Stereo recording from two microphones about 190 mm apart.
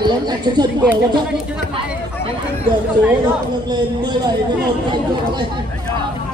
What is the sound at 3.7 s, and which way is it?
Speech, 20° right (ahead or behind).